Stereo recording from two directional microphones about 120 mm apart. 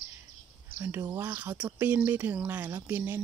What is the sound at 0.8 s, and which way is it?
Speech, 20° right (ahead or behind).